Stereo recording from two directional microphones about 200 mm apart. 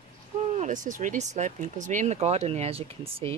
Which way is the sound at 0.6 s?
40° right (ahead or behind).